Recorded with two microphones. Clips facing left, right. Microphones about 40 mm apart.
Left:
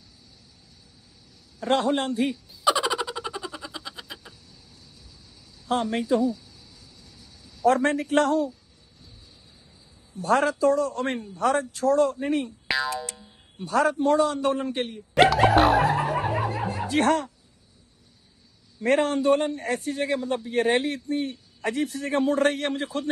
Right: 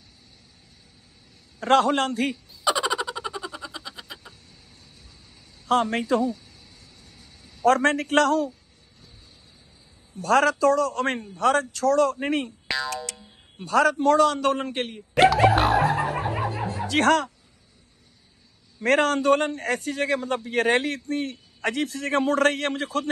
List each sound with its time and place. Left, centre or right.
1.9 s a man's voice: right
2.6 s a sound: centre
5.7 s a man's voice: right
6.2 s speech: right
7.6 s a man's voice: right
10.1 s a man's voice: right
12.6 s boing: centre
12.9 s a man's voice: right
15.1 s a sound: centre
16.8 s speech: right
18.9 s a man's voice: right